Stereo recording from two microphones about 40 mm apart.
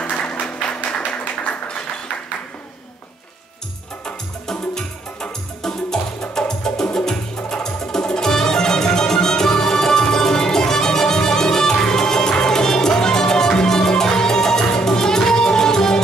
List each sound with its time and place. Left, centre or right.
0.2 s music: left
4.0 s music: centre